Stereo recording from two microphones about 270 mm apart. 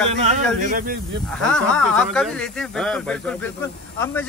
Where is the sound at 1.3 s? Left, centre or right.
Centre.